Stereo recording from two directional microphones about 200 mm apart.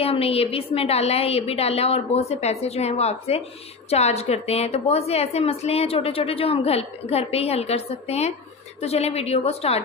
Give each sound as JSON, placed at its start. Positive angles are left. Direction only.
{"t": 0.0, "sound": "a woman's voice", "side_deg": 30}